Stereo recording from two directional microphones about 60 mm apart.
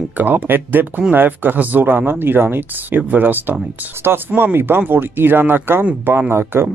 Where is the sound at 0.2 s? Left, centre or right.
Right.